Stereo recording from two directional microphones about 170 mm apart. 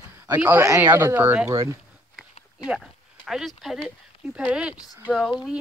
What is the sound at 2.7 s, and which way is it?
Speech, centre (ahead or behind).